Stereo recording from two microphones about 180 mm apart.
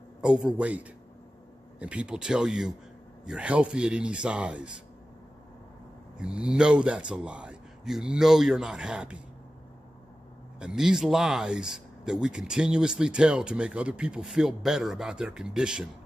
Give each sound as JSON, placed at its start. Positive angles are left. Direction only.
{"t": 0.2, "sound": "speech", "side_deg": -5}
{"t": 6.1, "sound": "speech", "side_deg": -5}
{"t": 10.6, "sound": "speech", "side_deg": -5}